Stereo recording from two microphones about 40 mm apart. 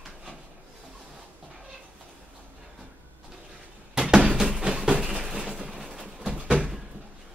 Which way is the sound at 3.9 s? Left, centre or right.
Centre.